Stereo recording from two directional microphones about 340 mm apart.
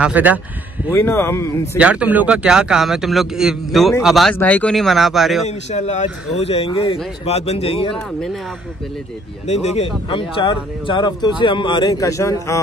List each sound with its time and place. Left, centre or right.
0.0 s speech: centre
0.9 s speech: centre
1.8 s speech: centre
5.5 s speech: centre
9.5 s speech: centre